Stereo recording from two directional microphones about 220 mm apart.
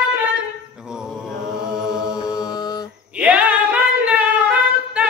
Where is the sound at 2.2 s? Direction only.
15° left (ahead or behind).